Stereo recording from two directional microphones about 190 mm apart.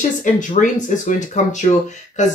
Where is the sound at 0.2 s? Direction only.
45° left (ahead or behind).